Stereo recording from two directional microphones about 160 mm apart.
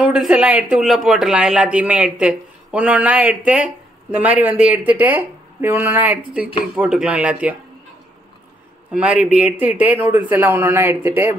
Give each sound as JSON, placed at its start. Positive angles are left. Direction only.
{"t": 0.0, "sound": "speech", "side_deg": -5}
{"t": 8.9, "sound": "speech", "side_deg": -5}